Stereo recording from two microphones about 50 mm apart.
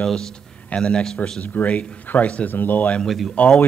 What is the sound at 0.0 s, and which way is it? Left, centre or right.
A man's voice, centre.